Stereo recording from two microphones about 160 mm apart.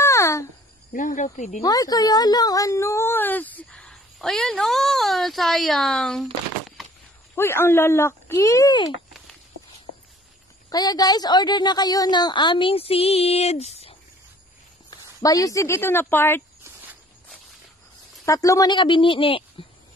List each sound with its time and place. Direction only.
0.0 s a sound: 20° left (ahead or behind)
0.9 s speech: 50° left (ahead or behind)
1.6 s speech: 25° left (ahead or behind); by 6.2 s 5° left (ahead or behind)
7.3 s speech: 15° left (ahead or behind)
10.7 s a woman's voice: 25° left (ahead or behind); by 13.9 s 40° left (ahead or behind)
14.9 s speech: 20° left (ahead or behind)
18.2 s a woman's voice: 20° left (ahead or behind)